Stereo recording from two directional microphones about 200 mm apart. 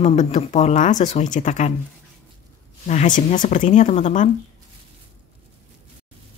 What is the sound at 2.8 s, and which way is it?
Speech, 35° left (ahead or behind).